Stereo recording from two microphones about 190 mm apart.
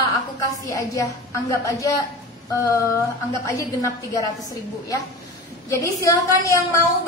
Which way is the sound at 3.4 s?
15° left (ahead or behind).